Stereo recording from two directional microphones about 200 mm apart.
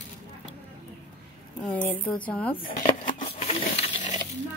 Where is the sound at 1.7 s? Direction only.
10° left (ahead or behind).